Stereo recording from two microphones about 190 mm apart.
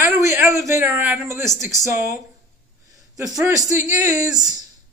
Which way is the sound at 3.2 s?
20° right (ahead or behind).